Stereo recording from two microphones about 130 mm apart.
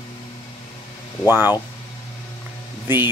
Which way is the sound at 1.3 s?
15° right (ahead or behind).